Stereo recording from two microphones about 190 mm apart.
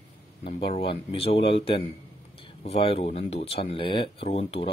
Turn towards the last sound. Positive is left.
turn(degrees=30)  # may be behind; listen again after turning